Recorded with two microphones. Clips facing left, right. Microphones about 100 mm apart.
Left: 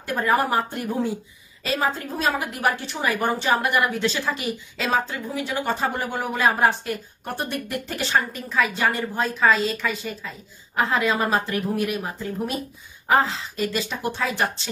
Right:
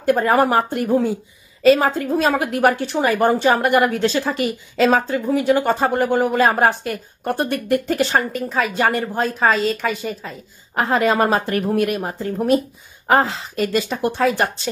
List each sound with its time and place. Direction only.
0.0 s a woman's voice: 60° right (ahead or behind)